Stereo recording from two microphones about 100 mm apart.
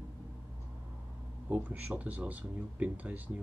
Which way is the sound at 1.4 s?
15° right (ahead or behind).